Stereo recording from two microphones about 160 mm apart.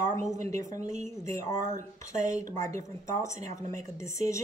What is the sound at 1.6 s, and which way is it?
Speech, 50° right (ahead or behind).